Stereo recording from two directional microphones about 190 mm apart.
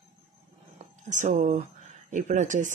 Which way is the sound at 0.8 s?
40° right (ahead or behind).